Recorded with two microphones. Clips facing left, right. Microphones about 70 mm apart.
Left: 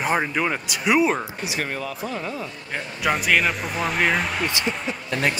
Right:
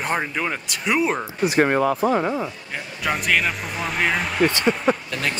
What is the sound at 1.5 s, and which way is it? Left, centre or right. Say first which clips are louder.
Speech: right 14 dB; right.